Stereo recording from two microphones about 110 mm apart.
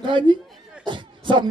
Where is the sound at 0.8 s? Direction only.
45° right (ahead or behind).